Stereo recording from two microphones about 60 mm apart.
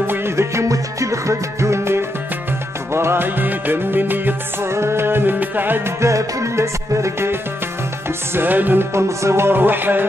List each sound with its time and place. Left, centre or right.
0.0 s music: right
0.4 s music: right
4.6 s music: right
5.9 s music: right
8.4 s music: right
8.9 s music: right